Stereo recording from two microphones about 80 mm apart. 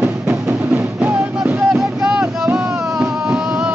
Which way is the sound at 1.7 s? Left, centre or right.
Centre.